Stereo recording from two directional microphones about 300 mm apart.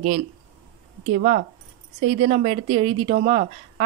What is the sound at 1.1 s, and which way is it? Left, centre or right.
A woman's voice, right.